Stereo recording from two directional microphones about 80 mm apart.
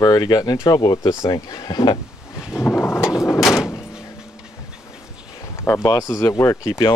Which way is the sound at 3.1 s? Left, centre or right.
Left.